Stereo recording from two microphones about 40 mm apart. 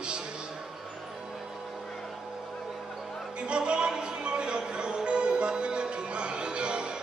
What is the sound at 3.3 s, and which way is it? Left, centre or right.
Music, right.